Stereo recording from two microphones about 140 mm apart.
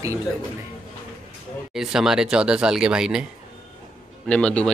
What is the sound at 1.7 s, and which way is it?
Speech, 5° right (ahead or behind).